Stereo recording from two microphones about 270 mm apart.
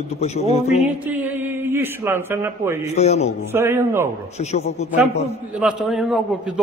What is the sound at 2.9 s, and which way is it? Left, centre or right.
Speech, left.